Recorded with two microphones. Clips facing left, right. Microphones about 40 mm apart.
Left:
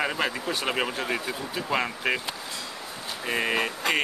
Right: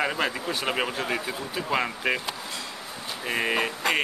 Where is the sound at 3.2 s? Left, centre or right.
Centre.